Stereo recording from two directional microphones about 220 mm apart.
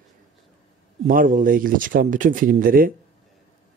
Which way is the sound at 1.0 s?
35° right (ahead or behind).